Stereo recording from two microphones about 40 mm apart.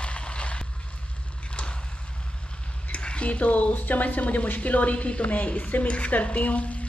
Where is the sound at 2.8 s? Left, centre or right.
Left.